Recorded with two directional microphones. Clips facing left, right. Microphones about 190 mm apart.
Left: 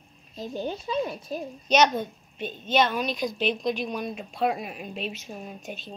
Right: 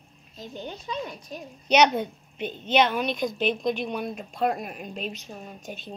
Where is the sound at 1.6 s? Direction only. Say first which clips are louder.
Right 1 dB; 15° right (ahead or behind).